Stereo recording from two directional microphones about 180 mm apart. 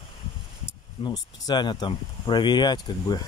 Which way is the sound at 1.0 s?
25° left (ahead or behind).